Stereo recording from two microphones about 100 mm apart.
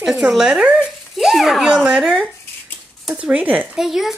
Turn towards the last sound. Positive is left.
turn(degrees=-5)  # may be behind; listen again after turning